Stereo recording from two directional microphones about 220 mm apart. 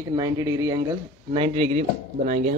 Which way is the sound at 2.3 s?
40° right (ahead or behind).